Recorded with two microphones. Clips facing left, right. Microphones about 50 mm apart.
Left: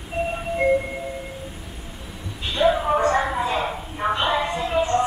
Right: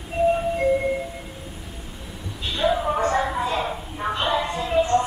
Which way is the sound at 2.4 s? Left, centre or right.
Centre.